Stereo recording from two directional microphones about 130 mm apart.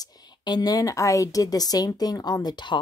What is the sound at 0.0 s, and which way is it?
Speech, 30° left (ahead or behind).